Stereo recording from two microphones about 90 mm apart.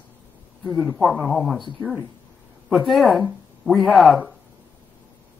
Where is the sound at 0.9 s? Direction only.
Centre (ahead or behind).